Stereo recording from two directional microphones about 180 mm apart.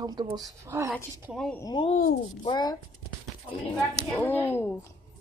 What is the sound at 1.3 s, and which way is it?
Speech, centre (ahead or behind).